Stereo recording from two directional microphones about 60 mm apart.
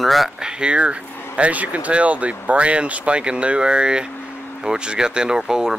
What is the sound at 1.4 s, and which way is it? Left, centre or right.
Speech, right.